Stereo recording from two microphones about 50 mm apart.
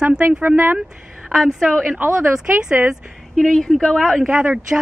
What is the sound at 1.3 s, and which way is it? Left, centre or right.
Speech, centre.